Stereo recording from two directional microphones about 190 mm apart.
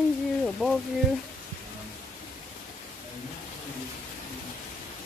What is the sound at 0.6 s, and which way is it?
Speech, 10° right (ahead or behind).